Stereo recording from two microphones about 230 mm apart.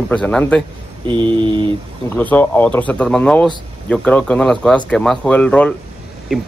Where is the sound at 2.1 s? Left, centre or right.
Centre.